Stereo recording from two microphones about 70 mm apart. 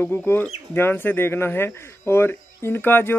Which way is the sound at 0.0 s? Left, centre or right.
Left.